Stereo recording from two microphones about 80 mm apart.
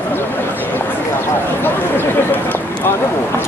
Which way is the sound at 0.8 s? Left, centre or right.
Left.